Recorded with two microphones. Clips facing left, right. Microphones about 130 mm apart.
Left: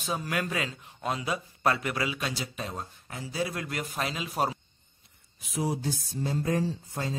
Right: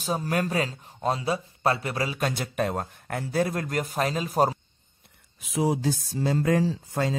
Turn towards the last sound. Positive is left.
turn(degrees=-90)